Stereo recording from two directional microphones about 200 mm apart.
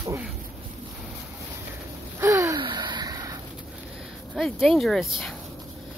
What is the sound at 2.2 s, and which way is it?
Gasp, 15° right (ahead or behind).